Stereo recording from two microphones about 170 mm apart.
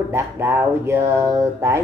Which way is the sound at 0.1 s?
15° right (ahead or behind).